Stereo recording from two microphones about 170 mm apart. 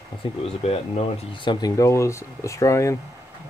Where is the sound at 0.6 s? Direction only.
35° left (ahead or behind); by 2.9 s 15° left (ahead or behind).